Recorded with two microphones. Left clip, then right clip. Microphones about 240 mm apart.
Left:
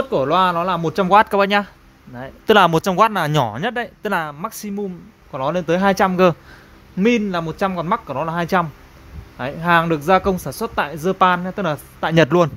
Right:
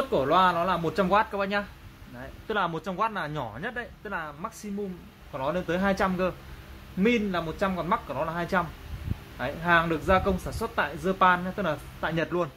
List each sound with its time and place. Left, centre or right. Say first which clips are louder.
0.1 s speech: left 6 dB; left